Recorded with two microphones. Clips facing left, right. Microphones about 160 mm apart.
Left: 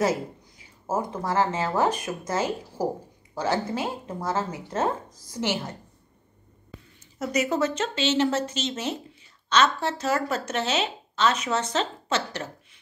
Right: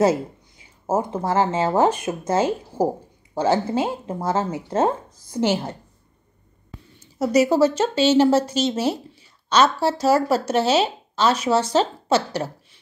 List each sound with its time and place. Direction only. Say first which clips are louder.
0.6 s speech: right 5 dB; 25° right (ahead or behind)
7.2 s a woman's voice: right 8 dB; 35° right (ahead or behind)